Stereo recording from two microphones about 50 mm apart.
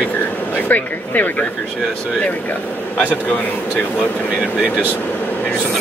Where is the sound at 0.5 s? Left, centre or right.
Left.